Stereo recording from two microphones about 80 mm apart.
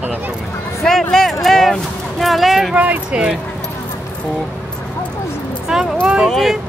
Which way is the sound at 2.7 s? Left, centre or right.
Centre.